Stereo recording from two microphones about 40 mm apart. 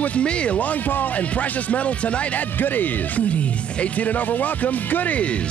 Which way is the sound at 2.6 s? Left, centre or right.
Left.